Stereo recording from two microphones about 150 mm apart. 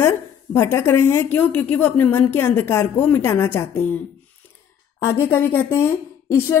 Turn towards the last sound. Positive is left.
turn(degrees=15)  # may be behind; listen again after turning